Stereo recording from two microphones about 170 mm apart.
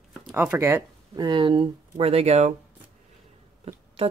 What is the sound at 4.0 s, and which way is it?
Speech, 35° right (ahead or behind).